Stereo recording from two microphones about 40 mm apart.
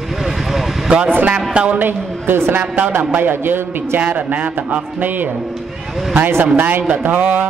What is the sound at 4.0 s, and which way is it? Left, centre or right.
A man's voice, right.